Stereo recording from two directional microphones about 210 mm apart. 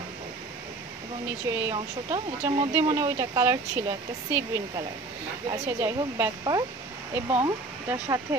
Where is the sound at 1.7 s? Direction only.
25° right (ahead or behind).